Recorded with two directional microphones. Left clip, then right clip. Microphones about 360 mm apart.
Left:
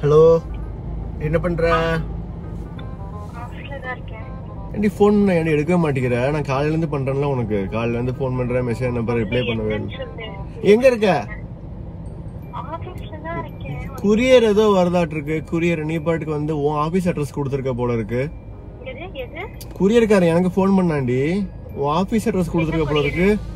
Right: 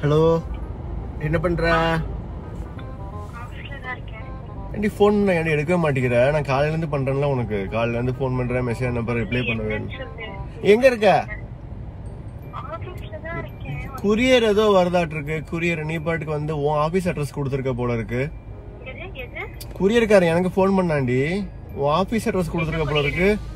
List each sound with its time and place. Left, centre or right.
0.0 s speech: centre
4.7 s a man's voice: centre
10.6 s a man's voice: centre
14.0 s a man's voice: centre
19.8 s a man's voice: centre